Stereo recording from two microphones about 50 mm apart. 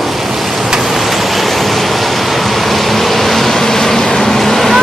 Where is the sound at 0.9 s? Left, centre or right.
Centre.